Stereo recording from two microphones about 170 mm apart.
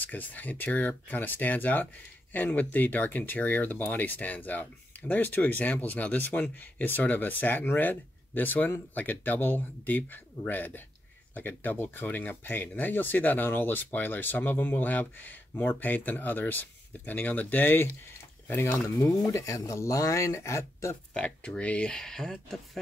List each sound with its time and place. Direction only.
0.0 s speech: 10° left (ahead or behind)
21.1 s speech: 5° left (ahead or behind)